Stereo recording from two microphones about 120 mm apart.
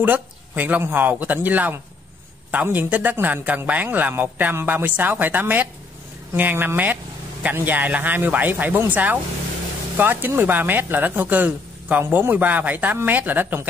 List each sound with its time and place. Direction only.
0.0 s speech: 15° right (ahead or behind)